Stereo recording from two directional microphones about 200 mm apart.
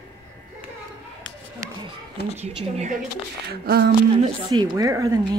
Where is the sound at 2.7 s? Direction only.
35° right (ahead or behind).